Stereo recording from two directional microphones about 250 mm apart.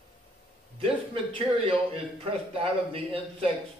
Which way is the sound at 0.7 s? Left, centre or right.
Right.